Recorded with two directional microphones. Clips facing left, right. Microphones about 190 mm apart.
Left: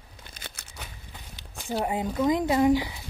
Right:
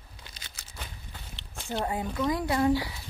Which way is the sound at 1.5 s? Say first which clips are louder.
Left 3 dB; 15° left (ahead or behind).